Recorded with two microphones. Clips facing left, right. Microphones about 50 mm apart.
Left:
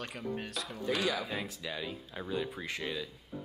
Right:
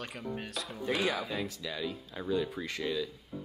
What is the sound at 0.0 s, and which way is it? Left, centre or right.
Speech, centre.